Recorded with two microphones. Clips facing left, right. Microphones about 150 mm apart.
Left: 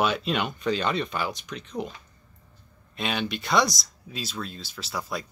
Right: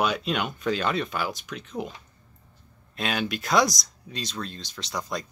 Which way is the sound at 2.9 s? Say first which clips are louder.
Right 1 dB; centre (ahead or behind).